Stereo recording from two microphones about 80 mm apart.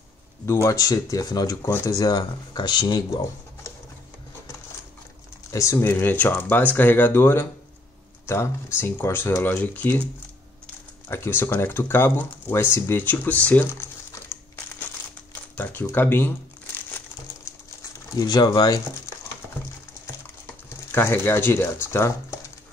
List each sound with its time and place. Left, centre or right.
0.5 s speech: left
5.5 s speech: left
11.1 s speech: left
15.5 s speech: left
18.1 s speech: left
20.9 s speech: left